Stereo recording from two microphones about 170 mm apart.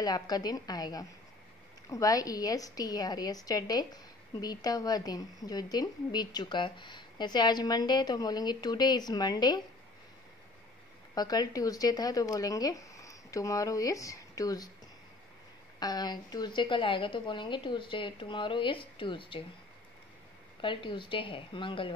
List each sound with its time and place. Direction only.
0.0 s a woman's voice: 25° left (ahead or behind)
11.1 s a woman's voice: 25° left (ahead or behind)
15.8 s a woman's voice: 25° left (ahead or behind)
20.6 s a woman's voice: 30° left (ahead or behind)